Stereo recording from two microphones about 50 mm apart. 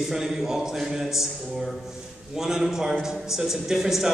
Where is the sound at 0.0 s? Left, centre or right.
Centre.